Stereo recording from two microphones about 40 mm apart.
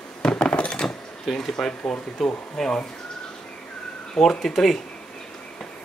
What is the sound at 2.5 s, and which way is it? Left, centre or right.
Speech, centre.